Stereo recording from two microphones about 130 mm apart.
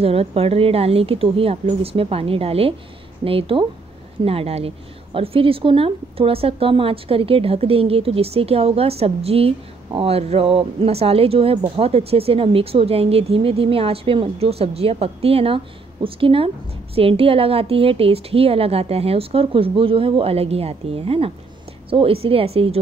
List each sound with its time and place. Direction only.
0.0 s a woman's voice: 50° right (ahead or behind)